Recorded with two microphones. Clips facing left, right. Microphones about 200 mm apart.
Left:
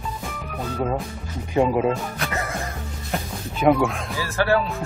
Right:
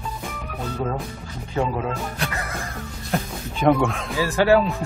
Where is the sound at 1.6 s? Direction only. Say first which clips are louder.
Left 5 dB; 15° left (ahead or behind).